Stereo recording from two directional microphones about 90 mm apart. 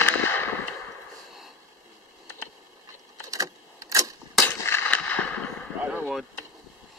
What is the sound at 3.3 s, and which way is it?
Keys jangling, 35° right (ahead or behind).